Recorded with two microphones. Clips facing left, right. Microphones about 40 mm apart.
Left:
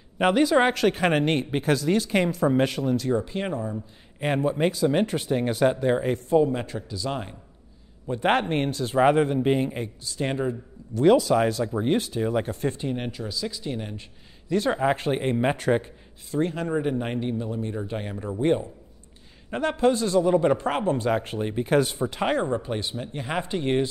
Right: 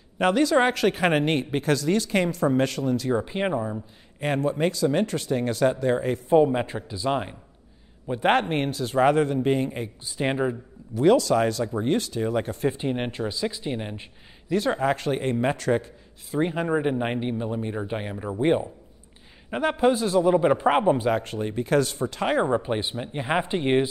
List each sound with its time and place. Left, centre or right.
0.2 s speech: centre
3.1 s speech: right
4.2 s speech: centre
6.2 s speech: right
8.1 s speech: centre
9.0 s speech: centre
10.0 s speech: centre
11.1 s speech: centre
12.7 s speech: right
14.5 s speech: centre
14.8 s speech: centre
16.3 s a man's voice: centre
21.2 s speech: centre
22.4 s speech: right